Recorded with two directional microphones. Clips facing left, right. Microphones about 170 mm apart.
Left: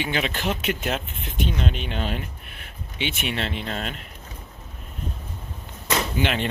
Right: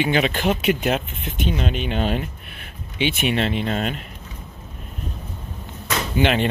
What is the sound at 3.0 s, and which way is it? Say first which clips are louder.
Speech: right 7 dB; 15° right (ahead or behind).